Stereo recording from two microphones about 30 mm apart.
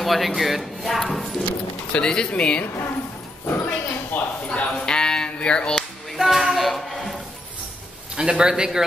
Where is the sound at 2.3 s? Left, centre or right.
Left.